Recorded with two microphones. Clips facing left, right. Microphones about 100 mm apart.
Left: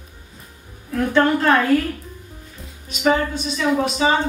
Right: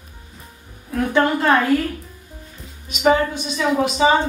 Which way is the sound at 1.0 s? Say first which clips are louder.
Left 1 dB; 10° right (ahead or behind).